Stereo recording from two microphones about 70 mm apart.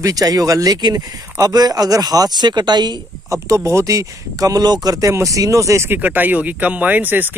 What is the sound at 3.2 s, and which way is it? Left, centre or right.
Speech, right.